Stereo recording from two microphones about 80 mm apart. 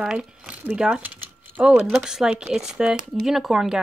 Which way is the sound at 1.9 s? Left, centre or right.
Centre.